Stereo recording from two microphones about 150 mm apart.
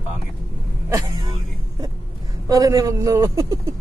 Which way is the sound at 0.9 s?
25° right (ahead or behind).